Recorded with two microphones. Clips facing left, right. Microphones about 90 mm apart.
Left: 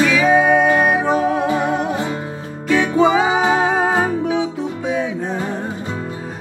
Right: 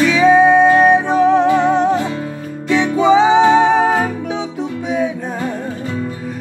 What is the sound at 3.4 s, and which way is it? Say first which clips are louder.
Music: right 5 dB; 20° left (ahead or behind).